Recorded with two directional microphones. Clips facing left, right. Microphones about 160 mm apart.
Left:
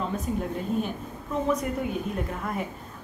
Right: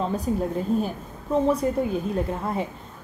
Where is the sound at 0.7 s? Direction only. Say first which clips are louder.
Right 3 dB; 35° right (ahead or behind).